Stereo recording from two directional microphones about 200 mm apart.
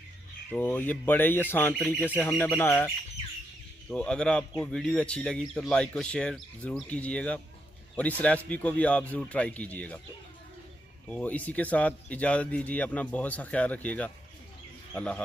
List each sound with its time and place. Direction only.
0.5 s speech: 10° left (ahead or behind)
3.9 s speech: 5° left (ahead or behind)
11.1 s speech: 10° left (ahead or behind)